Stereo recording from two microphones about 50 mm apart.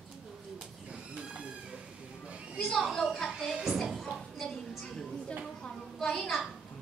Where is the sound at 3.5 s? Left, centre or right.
Centre.